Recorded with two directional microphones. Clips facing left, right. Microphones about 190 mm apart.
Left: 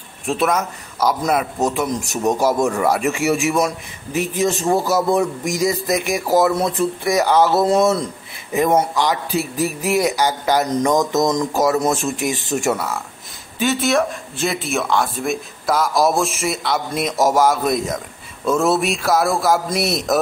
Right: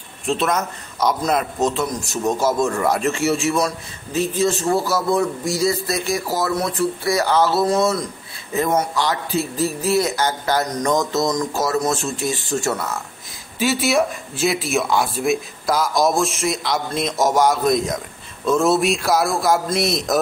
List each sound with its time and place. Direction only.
0.4 s speech: 5° left (ahead or behind)
1.6 s a man's voice: 15° left (ahead or behind)
13.6 s speech: centre (ahead or behind)